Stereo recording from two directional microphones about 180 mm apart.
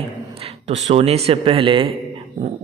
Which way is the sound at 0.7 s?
35° right (ahead or behind).